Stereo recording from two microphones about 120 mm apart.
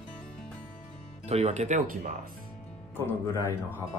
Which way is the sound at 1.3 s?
65° right (ahead or behind).